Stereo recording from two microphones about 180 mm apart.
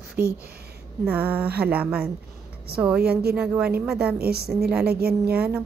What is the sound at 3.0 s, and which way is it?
Speech, 60° right (ahead or behind).